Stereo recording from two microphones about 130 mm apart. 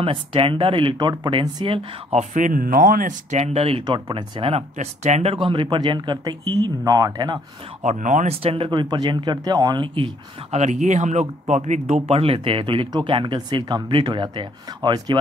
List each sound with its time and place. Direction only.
0.0 s speech: 45° right (ahead or behind)
2.1 s speech: 85° right; by 3.8 s 50° right (ahead or behind)
3.8 s speech: 40° right (ahead or behind)
4.7 s speech: 60° right (ahead or behind)
5.3 s speech: 40° right (ahead or behind)
7.8 s speech: 70° right (ahead or behind)
8.3 s speech: 50° right (ahead or behind)
8.6 s speech: 35° right (ahead or behind)
10.6 s speech: 65° right (ahead or behind); by 15.1 s 35° right (ahead or behind)